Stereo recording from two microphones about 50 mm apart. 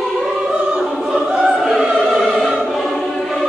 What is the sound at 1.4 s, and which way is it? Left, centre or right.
Opera, centre.